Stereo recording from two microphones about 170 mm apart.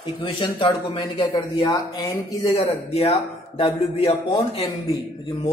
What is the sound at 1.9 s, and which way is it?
Speech, 20° left (ahead or behind).